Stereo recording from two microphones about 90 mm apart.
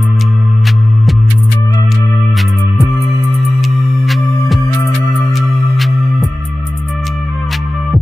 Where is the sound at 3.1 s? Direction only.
Centre (ahead or behind).